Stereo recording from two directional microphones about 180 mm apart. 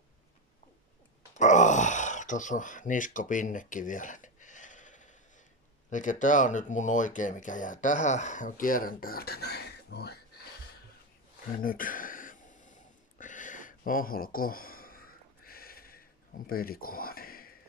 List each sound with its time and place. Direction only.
1.3 s groan: 40° left (ahead or behind)
5.9 s speech: 45° left (ahead or behind); by 10.5 s 65° left (ahead or behind)
11.5 s a sound: 50° left (ahead or behind)